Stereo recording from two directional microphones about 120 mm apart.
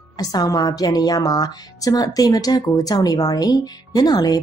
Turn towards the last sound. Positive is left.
turn(degrees=35)  # may be behind; listen again after turning